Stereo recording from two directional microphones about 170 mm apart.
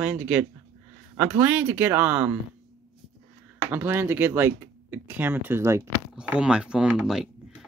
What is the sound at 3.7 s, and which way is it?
Speech, 10° right (ahead or behind).